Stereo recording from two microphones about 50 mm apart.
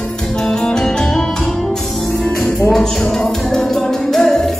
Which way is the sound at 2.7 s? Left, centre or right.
Centre.